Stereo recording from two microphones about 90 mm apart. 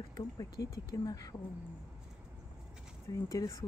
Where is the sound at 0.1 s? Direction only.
45° left (ahead or behind).